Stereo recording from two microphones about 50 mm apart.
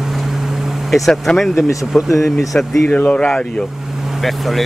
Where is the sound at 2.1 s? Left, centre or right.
Left.